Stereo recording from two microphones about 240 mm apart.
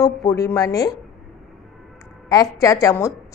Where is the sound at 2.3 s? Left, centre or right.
Centre.